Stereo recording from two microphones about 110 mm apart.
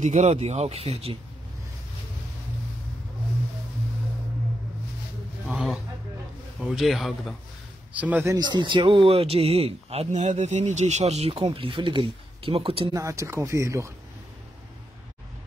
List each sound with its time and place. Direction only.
0.0 s speech: 90° right; by 1.1 s 70° right (ahead or behind)
5.5 s a man's voice: 5° right (ahead or behind)
7.9 s speech: 15° right (ahead or behind)
8.4 s speech: 40° right (ahead or behind); by 11.3 s 75° right (ahead or behind)
11.3 s speech: 55° right (ahead or behind)
12.9 s speech: 30° right (ahead or behind)